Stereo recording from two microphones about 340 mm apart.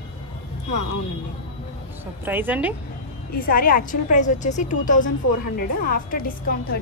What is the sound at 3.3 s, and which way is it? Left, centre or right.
A woman's voice, left.